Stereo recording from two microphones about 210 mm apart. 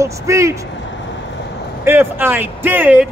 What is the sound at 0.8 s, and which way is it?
Vehicle, 55° left (ahead or behind).